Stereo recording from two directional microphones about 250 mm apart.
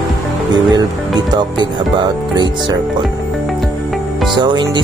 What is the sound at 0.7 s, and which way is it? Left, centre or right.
Speech, centre.